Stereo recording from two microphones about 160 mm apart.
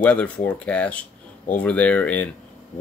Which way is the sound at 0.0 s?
10° left (ahead or behind).